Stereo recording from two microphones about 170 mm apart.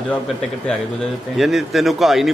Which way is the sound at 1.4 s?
Centre (ahead or behind).